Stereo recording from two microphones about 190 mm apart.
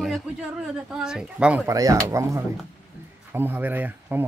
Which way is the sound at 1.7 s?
20° right (ahead or behind).